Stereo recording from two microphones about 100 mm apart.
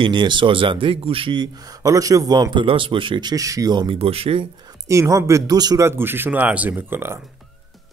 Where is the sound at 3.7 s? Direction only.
50° right (ahead or behind).